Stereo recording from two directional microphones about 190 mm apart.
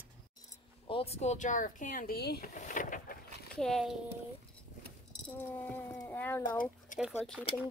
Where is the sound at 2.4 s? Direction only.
40° left (ahead or behind).